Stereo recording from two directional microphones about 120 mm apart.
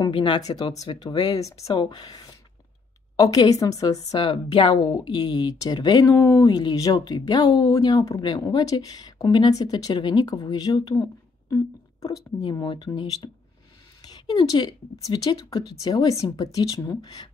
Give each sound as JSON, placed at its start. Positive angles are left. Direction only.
{"t": 0.0, "sound": "a woman's voice", "side_deg": 40}
{"t": 1.7, "sound": "a woman's voice", "side_deg": 40}
{"t": 6.1, "sound": "speech", "side_deg": 20}
{"t": 6.4, "sound": "a woman's voice", "side_deg": 35}
{"t": 11.5, "sound": "a sound", "side_deg": 30}
{"t": 12.4, "sound": "a woman's voice", "side_deg": 35}
{"t": 14.3, "sound": "a woman's voice", "side_deg": 35}